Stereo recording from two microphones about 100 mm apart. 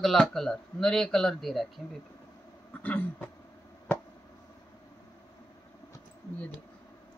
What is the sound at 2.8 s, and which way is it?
Speech, 15° left (ahead or behind).